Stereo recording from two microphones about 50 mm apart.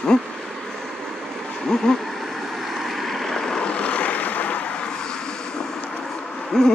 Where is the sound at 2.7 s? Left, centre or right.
Centre; by 4.6 s left.